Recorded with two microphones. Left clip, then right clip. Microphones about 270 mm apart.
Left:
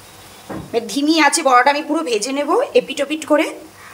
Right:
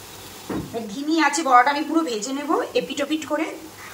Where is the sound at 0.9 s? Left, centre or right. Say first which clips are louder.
Left 6 dB; left.